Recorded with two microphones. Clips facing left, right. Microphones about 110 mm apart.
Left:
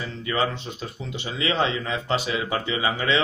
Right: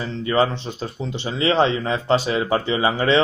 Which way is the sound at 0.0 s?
35° right (ahead or behind).